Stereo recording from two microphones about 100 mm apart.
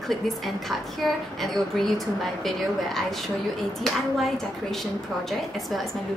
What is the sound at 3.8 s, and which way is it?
A woman's voice, 5° left (ahead or behind).